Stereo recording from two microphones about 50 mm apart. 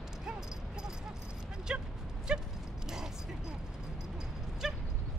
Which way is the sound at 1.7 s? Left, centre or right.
Right.